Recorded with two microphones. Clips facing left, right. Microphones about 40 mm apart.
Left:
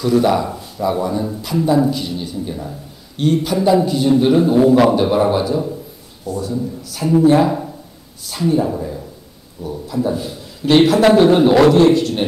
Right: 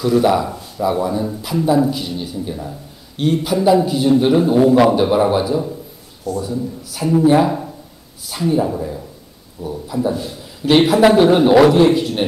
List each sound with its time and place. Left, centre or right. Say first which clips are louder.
0.0 s speech: even; centre